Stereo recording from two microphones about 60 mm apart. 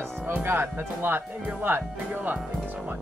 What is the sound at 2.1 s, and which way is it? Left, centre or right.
Speech, right.